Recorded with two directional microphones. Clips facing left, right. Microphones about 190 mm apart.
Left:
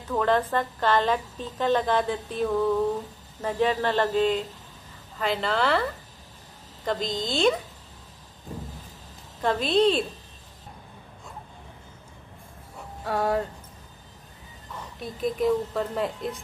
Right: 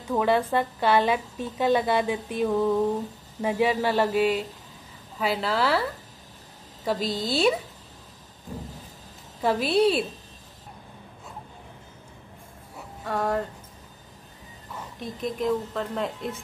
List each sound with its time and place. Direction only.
0.0 s a woman's voice: 10° right (ahead or behind)
9.4 s a woman's voice: 10° right (ahead or behind)
13.0 s a woman's voice: 5° left (ahead or behind)
15.0 s a woman's voice: 5° left (ahead or behind)